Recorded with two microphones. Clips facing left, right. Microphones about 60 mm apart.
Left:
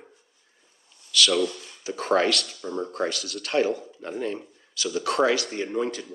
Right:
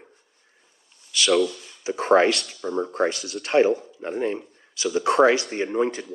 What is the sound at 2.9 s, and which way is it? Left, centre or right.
Speech, right.